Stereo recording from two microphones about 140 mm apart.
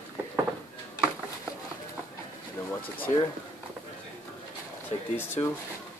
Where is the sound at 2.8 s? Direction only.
40° left (ahead or behind).